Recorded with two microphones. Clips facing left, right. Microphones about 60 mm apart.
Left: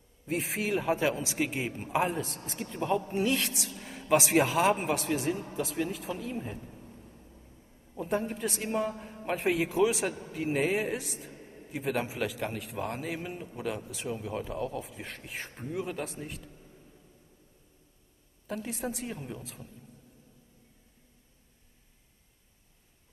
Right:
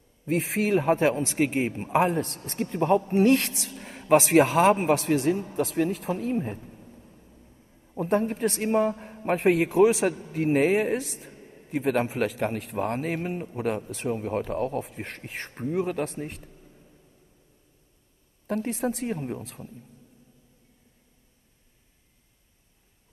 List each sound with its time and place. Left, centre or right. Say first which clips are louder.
0.3 s speech: right 7 dB; right
1.9 s speech: right 5 dB; right
3.7 s speech: right 6 dB; right
8.0 s speech: right 7 dB; right
18.5 s speech: right 7 dB; right